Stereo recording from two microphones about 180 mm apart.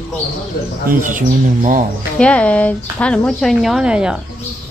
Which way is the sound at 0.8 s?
45° right (ahead or behind).